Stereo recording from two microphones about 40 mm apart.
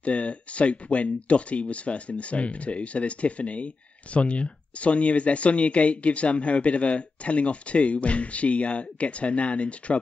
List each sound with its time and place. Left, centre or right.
0.0 s speech: left